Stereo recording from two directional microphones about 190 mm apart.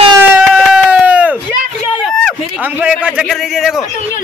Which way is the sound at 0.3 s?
5° right (ahead or behind).